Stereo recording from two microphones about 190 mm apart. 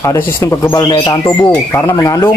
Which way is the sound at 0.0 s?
15° left (ahead or behind).